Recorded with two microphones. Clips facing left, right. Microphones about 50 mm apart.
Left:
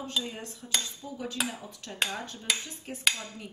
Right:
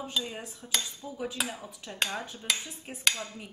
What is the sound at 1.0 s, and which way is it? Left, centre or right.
Cutlery, centre.